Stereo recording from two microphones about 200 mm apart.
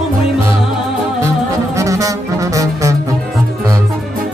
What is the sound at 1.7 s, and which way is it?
Saxophone, 15° right (ahead or behind).